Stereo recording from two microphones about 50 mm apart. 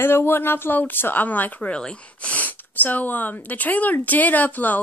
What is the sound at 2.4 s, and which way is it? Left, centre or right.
Speech, left.